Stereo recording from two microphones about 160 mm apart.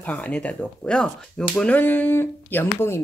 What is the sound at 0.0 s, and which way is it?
Speech, 10° left (ahead or behind).